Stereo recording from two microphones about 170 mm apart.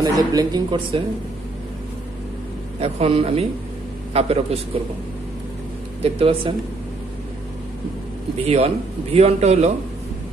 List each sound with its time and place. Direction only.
0.0 s speech: 20° right (ahead or behind)
2.8 s a man's voice: 35° right (ahead or behind)
6.0 s a man's voice: 35° right (ahead or behind)
8.4 s a man's voice: 35° right (ahead or behind)